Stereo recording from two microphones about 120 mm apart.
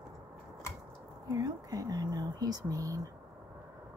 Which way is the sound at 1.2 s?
30° right (ahead or behind).